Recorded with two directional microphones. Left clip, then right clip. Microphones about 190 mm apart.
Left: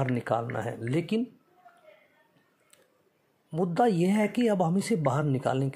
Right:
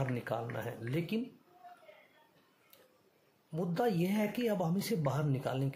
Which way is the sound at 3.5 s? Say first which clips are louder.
Left 8 dB; 30° left (ahead or behind).